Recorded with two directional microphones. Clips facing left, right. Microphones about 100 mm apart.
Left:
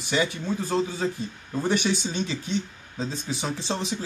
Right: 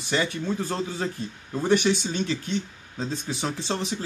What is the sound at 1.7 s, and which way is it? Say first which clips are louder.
Speech: right 4 dB; 15° left (ahead or behind).